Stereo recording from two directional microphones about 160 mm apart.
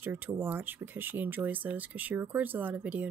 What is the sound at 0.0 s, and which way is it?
Speech, 10° right (ahead or behind).